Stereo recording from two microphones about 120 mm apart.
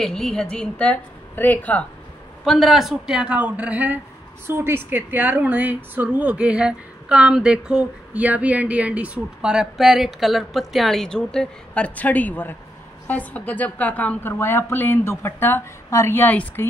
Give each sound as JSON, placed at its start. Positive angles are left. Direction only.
{"t": 0.0, "sound": "a woman's voice", "side_deg": 5}
{"t": 2.4, "sound": "a woman's voice", "side_deg": 0}